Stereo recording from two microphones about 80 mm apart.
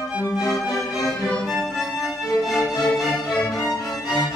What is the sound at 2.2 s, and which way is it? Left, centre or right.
Music, left.